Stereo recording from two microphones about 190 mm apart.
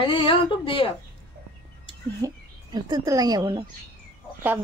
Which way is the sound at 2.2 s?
20° right (ahead or behind).